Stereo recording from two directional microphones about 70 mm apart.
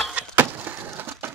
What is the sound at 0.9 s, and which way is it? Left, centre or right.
Crushing, right.